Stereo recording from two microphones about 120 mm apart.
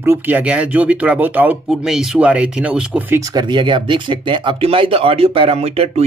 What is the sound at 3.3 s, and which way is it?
Speech, 40° right (ahead or behind).